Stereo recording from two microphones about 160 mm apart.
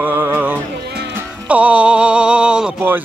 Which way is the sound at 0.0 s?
10° right (ahead or behind).